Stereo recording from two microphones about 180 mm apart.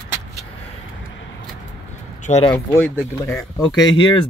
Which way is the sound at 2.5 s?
15° left (ahead or behind).